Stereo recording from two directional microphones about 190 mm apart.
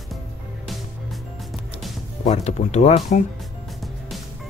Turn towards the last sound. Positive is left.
turn(degrees=35)  # may be behind; listen again after turning